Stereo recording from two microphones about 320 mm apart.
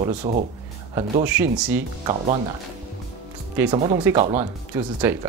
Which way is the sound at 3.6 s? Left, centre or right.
Centre.